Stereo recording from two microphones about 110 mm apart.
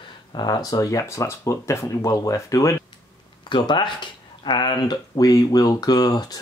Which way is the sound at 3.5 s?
45° left (ahead or behind).